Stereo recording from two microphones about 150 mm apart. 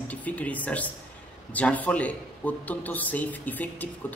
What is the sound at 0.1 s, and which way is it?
A man's voice, 10° left (ahead or behind).